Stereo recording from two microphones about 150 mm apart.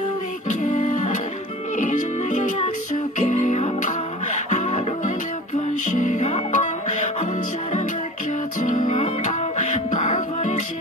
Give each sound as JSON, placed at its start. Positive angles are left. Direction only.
{"t": 0.5, "sound": "music", "side_deg": 60}
{"t": 8.5, "sound": "music", "side_deg": 55}